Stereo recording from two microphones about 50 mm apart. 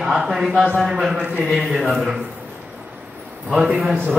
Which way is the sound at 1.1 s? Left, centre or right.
Right.